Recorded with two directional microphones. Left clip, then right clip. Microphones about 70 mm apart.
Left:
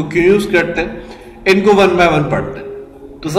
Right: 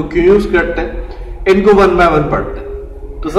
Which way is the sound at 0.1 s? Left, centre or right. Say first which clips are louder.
Right 2 dB; centre.